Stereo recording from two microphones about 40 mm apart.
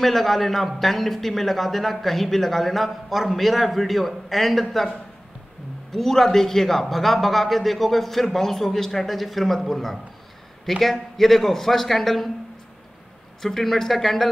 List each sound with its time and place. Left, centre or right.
0.0 s a man's voice: centre
13.4 s speech: centre